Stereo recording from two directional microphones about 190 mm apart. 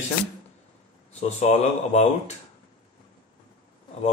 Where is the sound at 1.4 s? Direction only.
35° left (ahead or behind).